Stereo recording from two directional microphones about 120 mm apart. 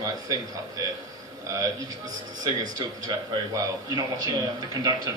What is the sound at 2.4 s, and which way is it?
Speech, 30° right (ahead or behind).